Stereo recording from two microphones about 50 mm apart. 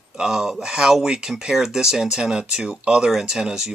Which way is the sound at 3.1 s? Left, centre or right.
Centre.